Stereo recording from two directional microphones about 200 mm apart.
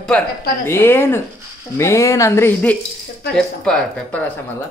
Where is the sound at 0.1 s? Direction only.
5° left (ahead or behind).